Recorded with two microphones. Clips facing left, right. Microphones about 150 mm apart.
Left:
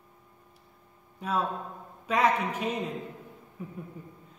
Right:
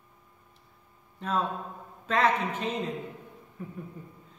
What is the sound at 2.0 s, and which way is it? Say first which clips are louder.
Speech: even; 10° left (ahead or behind).